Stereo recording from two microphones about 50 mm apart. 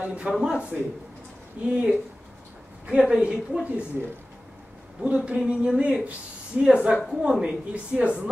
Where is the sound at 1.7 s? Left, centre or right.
Centre.